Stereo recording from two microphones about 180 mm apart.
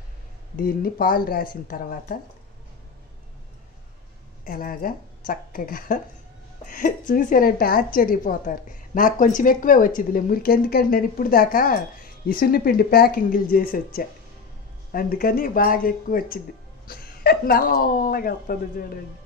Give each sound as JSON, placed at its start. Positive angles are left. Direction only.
{"t": 0.6, "sound": "a woman's voice", "side_deg": 55}
{"t": 4.5, "sound": "a woman's voice", "side_deg": 50}